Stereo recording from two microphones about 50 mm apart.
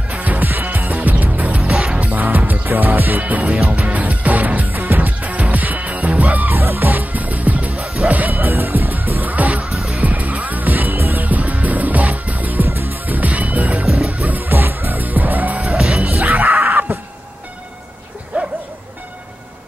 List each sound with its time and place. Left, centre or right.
0.2 s music: right
1.6 s music: centre
2.0 s music: right
2.7 s music: right
6.6 s music: right
8.3 s music: right
9.6 s music: centre
10.0 s music: right
11.2 s music: right
13.3 s music: right
13.8 s music: centre
14.2 s music: right
15.6 s music: centre
18.3 s bow-wow: right